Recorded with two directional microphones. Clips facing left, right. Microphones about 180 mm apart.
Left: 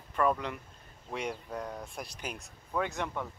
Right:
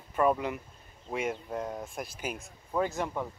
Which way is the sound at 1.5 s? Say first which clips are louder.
Right 3 dB; 20° right (ahead or behind).